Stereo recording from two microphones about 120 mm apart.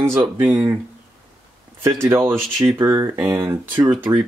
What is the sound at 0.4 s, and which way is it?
Speech, 20° right (ahead or behind).